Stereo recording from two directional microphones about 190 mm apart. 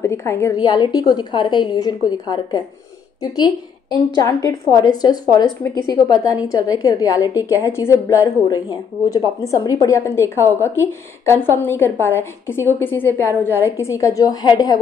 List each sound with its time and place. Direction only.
0.0 s a woman's voice: 15° left (ahead or behind)